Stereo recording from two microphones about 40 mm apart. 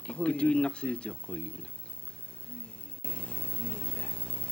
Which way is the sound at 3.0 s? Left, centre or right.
Left.